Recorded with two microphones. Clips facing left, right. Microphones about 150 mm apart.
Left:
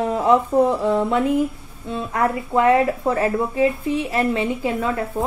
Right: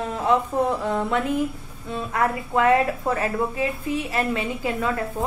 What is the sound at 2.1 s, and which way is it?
A woman's voice, 25° left (ahead or behind).